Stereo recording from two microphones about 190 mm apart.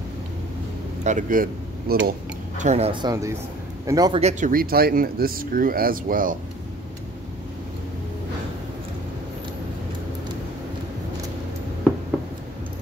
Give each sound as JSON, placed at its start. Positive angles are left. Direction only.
{"t": 1.0, "sound": "a man's voice", "side_deg": -45}
{"t": 4.2, "sound": "speech", "side_deg": -35}
{"t": 4.5, "sound": "speech", "side_deg": -50}